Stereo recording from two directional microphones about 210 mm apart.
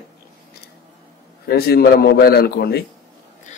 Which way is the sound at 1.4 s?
50° left (ahead or behind).